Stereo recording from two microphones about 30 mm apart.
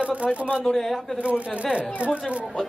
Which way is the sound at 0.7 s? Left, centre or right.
Centre.